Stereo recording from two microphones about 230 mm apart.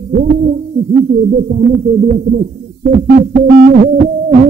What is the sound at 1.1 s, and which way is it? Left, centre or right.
Speech, right.